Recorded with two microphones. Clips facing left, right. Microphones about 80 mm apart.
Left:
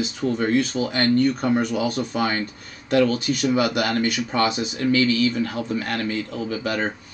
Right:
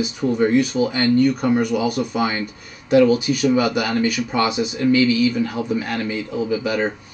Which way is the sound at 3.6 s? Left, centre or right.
Centre.